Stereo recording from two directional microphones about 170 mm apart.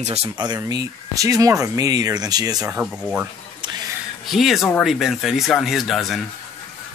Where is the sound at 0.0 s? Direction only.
40° right (ahead or behind).